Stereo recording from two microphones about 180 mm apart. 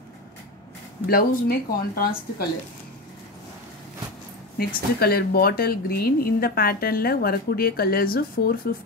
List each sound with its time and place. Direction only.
1.0 s speech: 55° left (ahead or behind)
4.6 s speech: 60° left (ahead or behind)